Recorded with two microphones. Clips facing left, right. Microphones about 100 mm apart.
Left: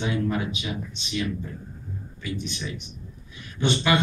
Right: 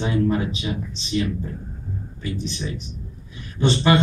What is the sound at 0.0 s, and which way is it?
Speech, 30° right (ahead or behind).